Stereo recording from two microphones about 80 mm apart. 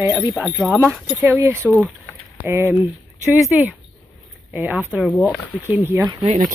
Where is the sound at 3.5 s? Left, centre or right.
Centre.